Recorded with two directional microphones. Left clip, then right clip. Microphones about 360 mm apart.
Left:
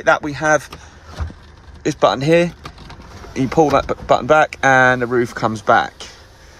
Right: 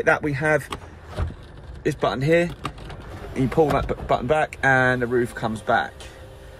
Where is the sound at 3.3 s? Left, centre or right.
Left.